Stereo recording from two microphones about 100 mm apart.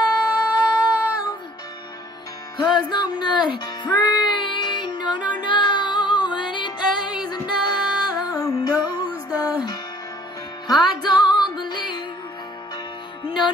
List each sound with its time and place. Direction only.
0.3 s music: 15° right (ahead or behind)
2.5 s music: 45° left (ahead or behind)
13.2 s music: 45° left (ahead or behind)